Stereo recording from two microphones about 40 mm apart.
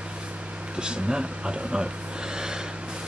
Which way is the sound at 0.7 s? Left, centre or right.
Right.